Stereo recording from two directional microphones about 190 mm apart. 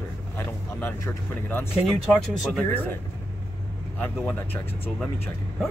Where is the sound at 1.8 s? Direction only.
Centre (ahead or behind).